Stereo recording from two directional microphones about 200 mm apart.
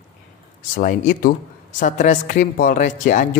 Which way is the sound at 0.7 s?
40° left (ahead or behind).